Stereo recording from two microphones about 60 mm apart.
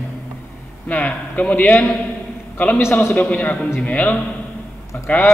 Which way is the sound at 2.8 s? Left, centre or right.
Left.